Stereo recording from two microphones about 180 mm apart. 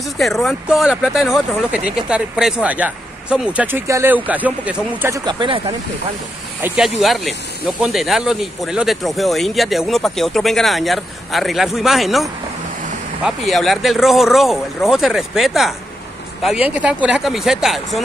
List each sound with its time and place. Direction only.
0.2 s speech: centre (ahead or behind)
5.1 s speech: 25° right (ahead or behind)
6.6 s speech: centre (ahead or behind)